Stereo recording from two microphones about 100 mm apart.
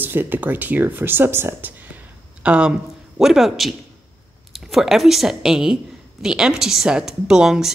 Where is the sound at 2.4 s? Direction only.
10° right (ahead or behind).